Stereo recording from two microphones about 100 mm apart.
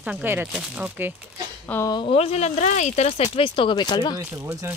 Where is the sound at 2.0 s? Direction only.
80° left; by 4.1 s 45° left (ahead or behind).